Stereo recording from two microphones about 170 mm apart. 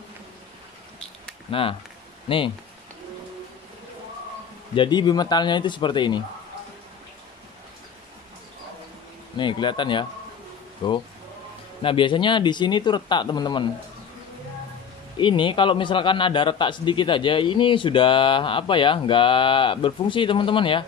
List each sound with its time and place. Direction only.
1.5 s speech: 30° left (ahead or behind)
4.7 s a man's voice: 25° left (ahead or behind)
9.4 s a man's voice: 25° left (ahead or behind)
15.1 s a man's voice: 30° left (ahead or behind)